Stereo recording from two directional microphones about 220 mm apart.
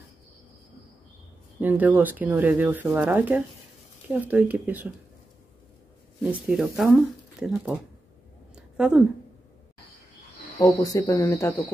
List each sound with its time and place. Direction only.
1.6 s speech: 10° right (ahead or behind)
6.2 s speech: centre (ahead or behind)
8.5 s a sound: 5° right (ahead or behind)
10.8 s speech: 15° left (ahead or behind)